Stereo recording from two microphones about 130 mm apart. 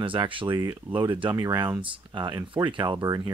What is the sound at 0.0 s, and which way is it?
Speech, 40° right (ahead or behind).